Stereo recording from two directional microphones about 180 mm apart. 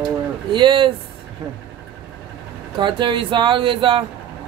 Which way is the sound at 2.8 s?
25° right (ahead or behind).